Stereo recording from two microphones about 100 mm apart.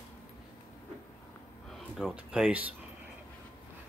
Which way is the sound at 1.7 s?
Centre (ahead or behind).